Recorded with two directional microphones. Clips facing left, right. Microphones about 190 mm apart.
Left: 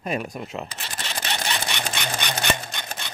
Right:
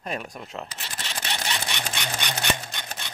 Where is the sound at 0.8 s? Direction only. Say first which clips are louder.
Left 3 dB; 60° left (ahead or behind).